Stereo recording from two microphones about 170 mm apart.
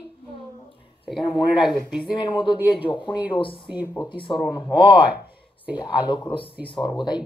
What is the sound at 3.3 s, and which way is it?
Speech, 30° left (ahead or behind).